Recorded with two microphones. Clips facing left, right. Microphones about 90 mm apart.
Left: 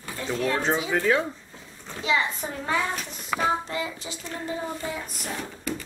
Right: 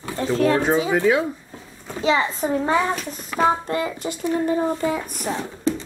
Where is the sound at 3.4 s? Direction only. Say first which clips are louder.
Right 7 dB; 50° right (ahead or behind).